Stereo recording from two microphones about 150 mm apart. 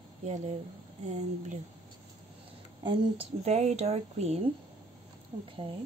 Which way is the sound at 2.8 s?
30° right (ahead or behind).